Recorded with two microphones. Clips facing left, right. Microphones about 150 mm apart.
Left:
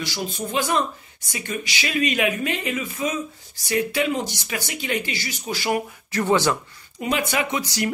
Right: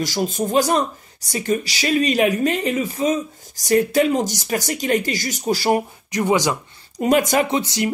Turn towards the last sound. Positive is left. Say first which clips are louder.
# right 3 dB
turn(degrees=-20)  # may be behind; listen again after turning